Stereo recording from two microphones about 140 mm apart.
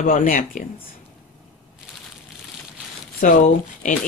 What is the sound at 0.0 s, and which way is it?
Speech, 80° left.